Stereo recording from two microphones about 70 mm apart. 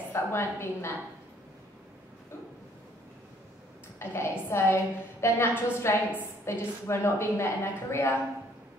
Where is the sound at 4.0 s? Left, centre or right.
Left.